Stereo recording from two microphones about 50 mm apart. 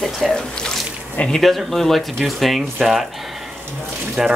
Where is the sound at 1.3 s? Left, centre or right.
Centre.